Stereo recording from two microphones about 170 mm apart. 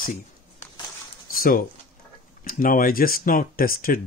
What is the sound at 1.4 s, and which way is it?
Speech, 55° left (ahead or behind).